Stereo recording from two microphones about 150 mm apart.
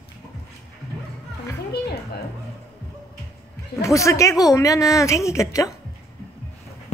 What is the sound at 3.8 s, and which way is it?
A woman's voice, 20° left (ahead or behind).